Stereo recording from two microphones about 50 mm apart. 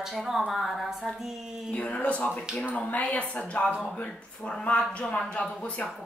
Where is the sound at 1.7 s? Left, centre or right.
Left.